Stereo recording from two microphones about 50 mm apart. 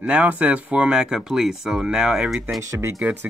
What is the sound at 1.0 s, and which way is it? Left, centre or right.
Speech, centre.